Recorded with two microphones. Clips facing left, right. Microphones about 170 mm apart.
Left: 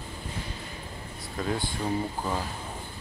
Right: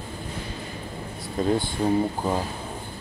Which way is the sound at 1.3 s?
25° right (ahead or behind).